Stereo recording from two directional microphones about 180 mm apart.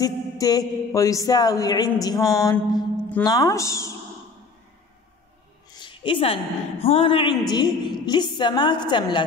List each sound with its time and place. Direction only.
0.0 s a woman's voice: 20° left (ahead or behind)
5.8 s a woman's voice: 25° left (ahead or behind)